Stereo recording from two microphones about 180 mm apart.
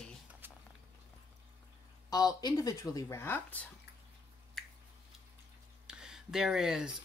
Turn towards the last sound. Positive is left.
turn(degrees=-5)  # may be behind; listen again after turning